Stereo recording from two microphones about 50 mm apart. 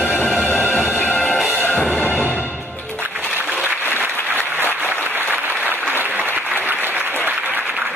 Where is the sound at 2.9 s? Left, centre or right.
Right.